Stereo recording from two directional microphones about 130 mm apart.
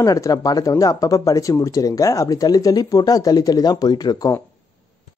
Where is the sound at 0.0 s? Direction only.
25° left (ahead or behind).